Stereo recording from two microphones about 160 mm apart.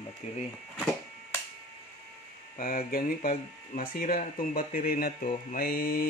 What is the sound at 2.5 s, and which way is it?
Speech, 60° left (ahead or behind).